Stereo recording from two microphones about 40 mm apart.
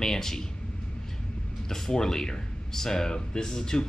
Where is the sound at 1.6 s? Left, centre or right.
Centre.